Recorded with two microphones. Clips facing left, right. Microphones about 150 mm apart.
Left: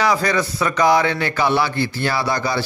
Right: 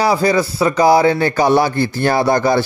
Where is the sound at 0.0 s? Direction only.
30° right (ahead or behind).